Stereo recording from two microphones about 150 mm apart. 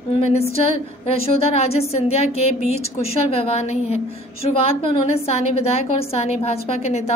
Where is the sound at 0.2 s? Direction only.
45° left (ahead or behind).